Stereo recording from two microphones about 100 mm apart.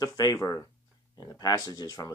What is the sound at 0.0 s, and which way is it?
Speech, 35° left (ahead or behind).